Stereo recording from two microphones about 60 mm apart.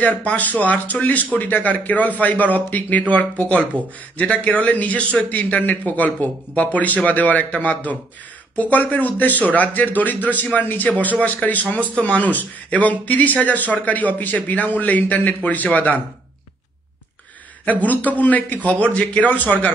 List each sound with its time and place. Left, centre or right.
0.0 s speech: left
17.6 s speech: left